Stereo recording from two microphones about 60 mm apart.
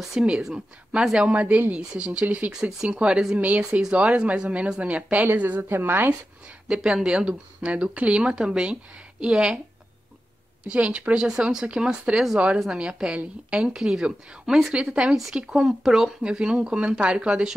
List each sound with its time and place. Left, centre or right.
0.0 s speech: centre
2.2 s speech: right
2.5 s speech: centre
3.3 s speech: right
6.7 s speech: centre
10.7 s speech: centre